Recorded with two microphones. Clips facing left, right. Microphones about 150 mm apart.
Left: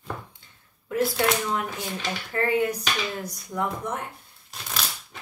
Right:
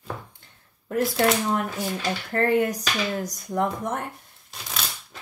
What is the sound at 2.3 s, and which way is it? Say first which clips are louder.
Speech: right 2 dB; 45° right (ahead or behind).